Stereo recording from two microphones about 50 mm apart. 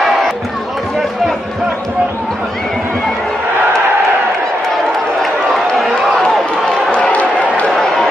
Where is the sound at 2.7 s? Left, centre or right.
Centre.